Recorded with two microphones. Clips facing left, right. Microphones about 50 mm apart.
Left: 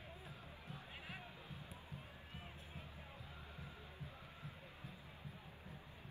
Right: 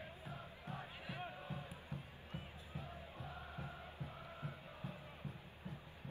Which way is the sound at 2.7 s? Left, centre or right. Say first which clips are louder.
Right 4 dB; right.